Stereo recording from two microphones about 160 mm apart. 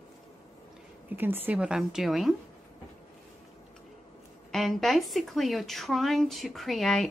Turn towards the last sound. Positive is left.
turn(degrees=0)  # may be behind; listen again after turning